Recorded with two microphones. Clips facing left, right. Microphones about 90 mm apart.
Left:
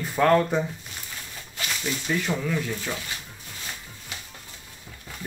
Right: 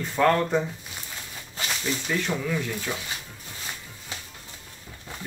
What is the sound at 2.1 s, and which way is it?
Speech, 5° left (ahead or behind).